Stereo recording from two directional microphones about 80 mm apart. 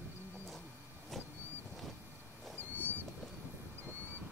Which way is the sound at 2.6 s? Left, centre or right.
Left.